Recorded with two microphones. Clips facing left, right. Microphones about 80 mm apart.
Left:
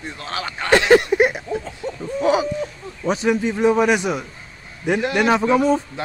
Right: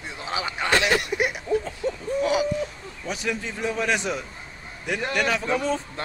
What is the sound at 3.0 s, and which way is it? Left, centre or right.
A man's voice, left.